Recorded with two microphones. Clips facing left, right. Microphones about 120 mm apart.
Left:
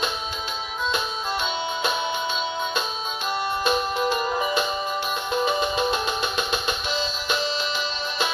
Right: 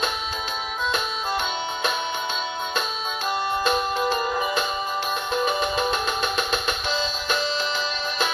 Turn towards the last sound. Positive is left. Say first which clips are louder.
# right 1 dB
turn(degrees=20)  # may be behind; listen again after turning